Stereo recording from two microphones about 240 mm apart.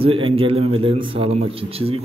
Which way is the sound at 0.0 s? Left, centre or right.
Right.